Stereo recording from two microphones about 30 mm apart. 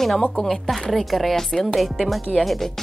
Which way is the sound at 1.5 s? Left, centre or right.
Left.